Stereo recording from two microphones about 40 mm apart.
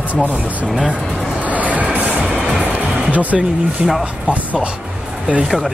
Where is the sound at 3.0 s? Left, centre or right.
Right.